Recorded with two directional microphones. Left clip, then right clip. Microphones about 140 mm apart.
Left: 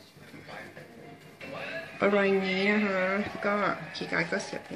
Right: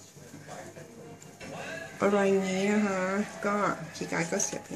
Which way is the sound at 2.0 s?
10° right (ahead or behind).